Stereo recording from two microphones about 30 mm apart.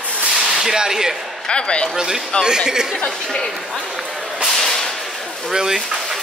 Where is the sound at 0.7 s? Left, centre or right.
Centre.